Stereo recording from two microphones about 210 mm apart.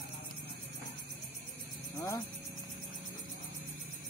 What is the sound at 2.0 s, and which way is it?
Speech, 15° left (ahead or behind).